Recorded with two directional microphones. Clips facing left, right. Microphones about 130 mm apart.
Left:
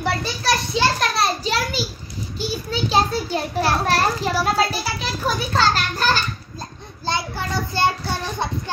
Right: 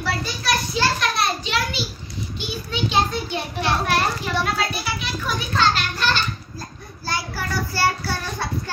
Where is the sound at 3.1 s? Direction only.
40° left (ahead or behind).